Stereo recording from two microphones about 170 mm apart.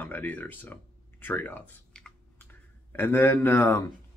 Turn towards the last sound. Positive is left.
turn(degrees=15)  # may be behind; listen again after turning